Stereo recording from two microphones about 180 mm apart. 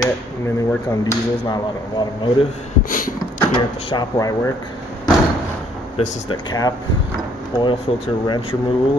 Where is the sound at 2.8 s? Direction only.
50° left (ahead or behind).